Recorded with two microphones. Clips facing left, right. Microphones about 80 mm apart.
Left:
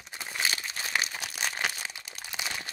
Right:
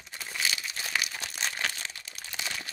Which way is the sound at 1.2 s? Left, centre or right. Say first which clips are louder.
Left 1 dB; centre.